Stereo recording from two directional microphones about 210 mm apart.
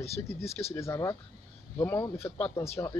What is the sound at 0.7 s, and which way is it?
Speech, 15° left (ahead or behind).